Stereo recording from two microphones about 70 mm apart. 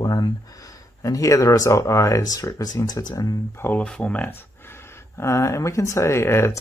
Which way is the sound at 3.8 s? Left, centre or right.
Centre.